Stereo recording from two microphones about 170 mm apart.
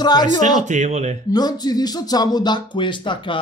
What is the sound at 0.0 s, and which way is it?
Speech, 25° left (ahead or behind).